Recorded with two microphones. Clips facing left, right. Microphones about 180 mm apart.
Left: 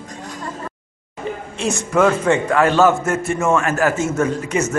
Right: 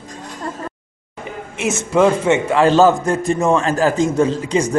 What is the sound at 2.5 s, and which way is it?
A man's voice, 30° right (ahead or behind).